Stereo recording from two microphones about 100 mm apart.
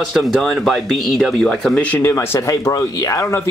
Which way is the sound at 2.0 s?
25° left (ahead or behind).